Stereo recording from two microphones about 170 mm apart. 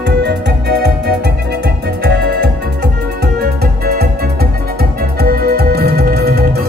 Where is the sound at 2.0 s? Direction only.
70° right (ahead or behind).